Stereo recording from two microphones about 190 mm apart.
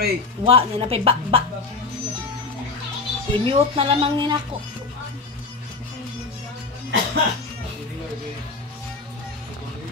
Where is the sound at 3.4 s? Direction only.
30° right (ahead or behind).